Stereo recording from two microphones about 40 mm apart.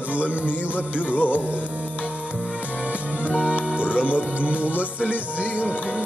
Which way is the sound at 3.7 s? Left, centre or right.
Right.